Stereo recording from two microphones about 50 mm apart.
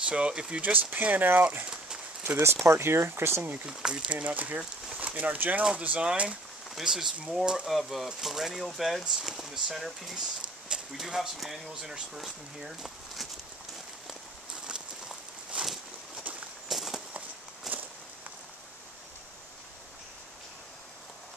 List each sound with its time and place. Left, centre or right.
0.0 s speech: centre
0.6 s speech: right
2.6 s speech: right
3.6 s speech: centre
4.1 s speech: right
5.7 s speech: right
6.7 s speech: centre
7.6 s speech: centre
10.1 s a sound: centre
11.0 s speech: centre
14.5 s a sound: centre
16.6 s walk: centre
17.7 s a sound: centre